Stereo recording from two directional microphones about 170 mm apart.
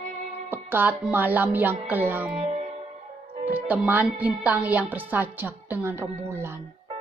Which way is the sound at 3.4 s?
10° right (ahead or behind).